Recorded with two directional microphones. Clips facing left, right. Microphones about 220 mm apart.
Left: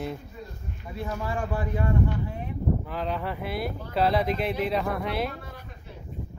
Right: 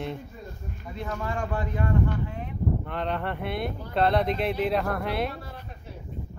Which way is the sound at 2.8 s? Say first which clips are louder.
Right 1 dB; centre (ahead or behind).